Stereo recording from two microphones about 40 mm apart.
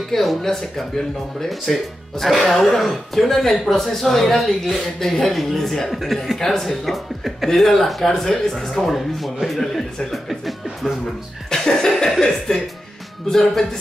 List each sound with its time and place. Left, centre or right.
0.1 s speech: centre
10.1 s a sound: centre
11.5 s chuckle: centre
12.2 s speech: centre